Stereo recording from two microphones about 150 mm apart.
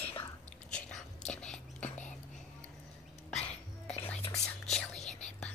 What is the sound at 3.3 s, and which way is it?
Music, 50° left (ahead or behind).